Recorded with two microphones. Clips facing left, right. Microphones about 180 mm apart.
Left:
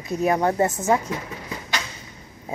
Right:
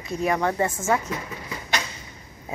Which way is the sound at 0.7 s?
15° left (ahead or behind).